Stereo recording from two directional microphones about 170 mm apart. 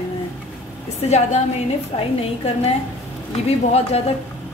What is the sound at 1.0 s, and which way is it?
Speech, 40° left (ahead or behind).